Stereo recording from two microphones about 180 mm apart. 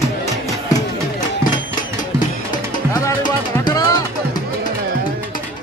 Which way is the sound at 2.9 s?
25° left (ahead or behind).